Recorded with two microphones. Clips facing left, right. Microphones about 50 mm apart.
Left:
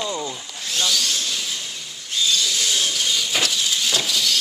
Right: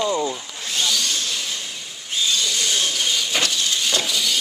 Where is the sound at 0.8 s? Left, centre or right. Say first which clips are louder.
Even; centre.